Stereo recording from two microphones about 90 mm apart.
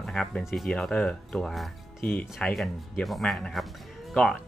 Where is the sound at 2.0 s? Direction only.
15° left (ahead or behind).